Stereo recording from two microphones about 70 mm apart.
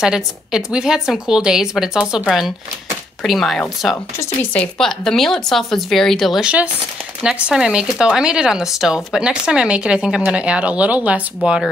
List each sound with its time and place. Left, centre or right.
0.0 s speech: centre
3.3 s speech: centre
6.4 s speech: centre